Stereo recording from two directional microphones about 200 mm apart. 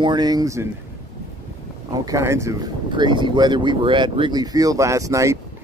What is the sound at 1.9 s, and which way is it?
Speech, 15° right (ahead or behind).